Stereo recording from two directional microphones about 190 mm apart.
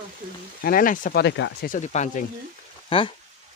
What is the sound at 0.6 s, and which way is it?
Speech, 45° left (ahead or behind).